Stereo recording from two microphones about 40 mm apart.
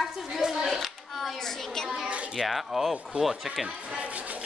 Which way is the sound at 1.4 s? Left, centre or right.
Centre.